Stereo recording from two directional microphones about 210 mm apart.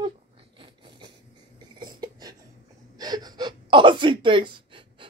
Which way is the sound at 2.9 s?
20° right (ahead or behind).